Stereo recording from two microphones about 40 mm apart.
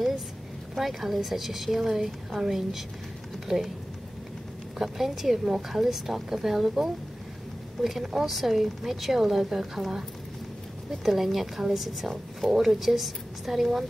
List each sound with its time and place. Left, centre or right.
0.7 s a woman's voice: centre
4.7 s a woman's voice: centre
11.1 s a woman's voice: centre